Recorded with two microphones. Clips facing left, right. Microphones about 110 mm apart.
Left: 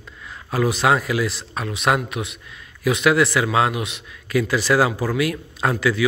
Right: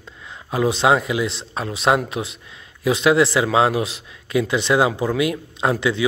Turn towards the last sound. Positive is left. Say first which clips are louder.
# right 1 dB
turn(degrees=-25)  # may be behind; listen again after turning